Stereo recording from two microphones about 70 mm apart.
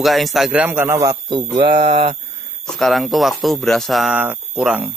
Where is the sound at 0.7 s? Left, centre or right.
Right.